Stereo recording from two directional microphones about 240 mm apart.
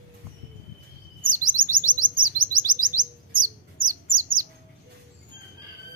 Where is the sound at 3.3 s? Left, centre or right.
Right.